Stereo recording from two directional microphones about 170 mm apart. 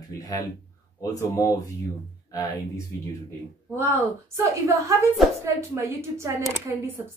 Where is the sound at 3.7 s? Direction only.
15° right (ahead or behind).